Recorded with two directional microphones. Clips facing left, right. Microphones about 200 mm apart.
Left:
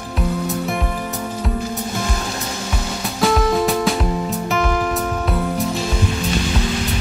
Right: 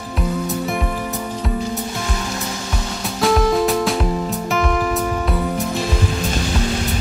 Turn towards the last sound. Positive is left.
turn(degrees=0)  # may be behind; listen again after turning